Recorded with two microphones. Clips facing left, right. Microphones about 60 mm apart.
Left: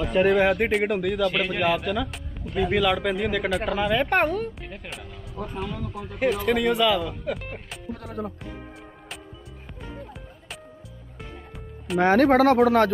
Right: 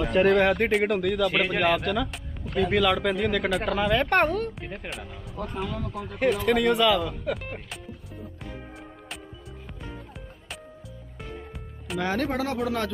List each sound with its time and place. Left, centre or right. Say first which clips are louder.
0.0 s a man's voice: even; centre
7.9 s speech: left 10 dB; left
12.2 s speech: left 10 dB; left